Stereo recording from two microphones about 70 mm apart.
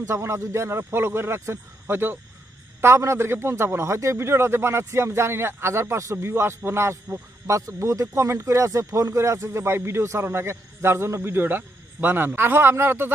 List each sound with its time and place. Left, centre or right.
0.0 s speech: right